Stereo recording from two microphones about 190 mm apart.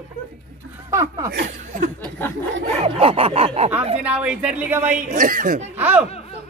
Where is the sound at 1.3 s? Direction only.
60° right (ahead or behind).